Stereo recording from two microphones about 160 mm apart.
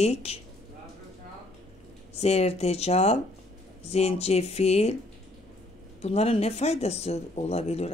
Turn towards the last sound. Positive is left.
turn(degrees=40)  # may be behind; listen again after turning